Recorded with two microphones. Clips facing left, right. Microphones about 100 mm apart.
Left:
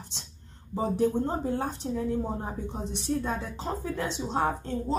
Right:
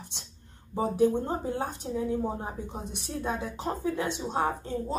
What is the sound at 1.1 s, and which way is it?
A woman's voice, 15° right (ahead or behind).